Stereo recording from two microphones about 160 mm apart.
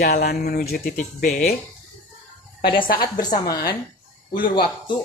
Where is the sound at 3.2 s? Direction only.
25° left (ahead or behind).